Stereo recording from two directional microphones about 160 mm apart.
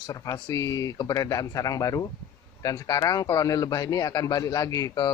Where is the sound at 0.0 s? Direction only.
20° left (ahead or behind).